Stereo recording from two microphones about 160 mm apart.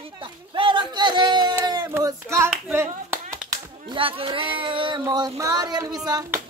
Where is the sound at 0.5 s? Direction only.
30° right (ahead or behind).